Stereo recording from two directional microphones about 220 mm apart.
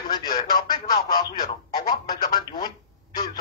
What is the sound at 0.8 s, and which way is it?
Speech, 20° left (ahead or behind).